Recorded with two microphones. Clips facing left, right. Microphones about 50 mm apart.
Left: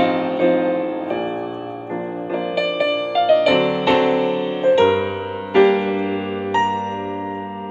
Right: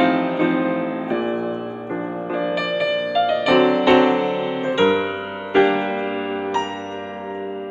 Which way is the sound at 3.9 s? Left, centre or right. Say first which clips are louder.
Right 1 dB; right.